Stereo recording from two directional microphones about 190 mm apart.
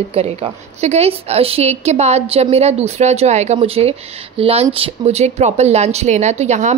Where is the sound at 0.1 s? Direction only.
30° right (ahead or behind).